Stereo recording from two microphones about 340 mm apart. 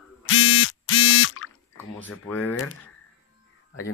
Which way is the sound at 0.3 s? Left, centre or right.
Left.